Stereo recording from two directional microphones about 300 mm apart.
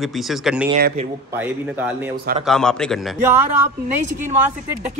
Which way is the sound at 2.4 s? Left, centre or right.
Centre.